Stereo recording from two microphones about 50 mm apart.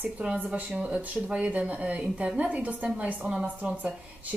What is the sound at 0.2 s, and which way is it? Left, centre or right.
Speech, right.